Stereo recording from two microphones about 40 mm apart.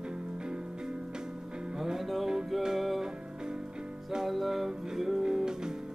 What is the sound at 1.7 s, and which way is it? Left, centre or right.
Music, centre.